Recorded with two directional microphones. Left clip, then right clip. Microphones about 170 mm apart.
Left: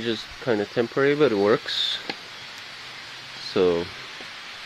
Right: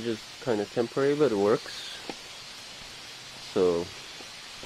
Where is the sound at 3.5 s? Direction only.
10° left (ahead or behind).